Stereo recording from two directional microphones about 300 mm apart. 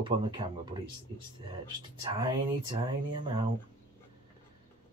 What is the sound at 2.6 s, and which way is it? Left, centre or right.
Speech, centre.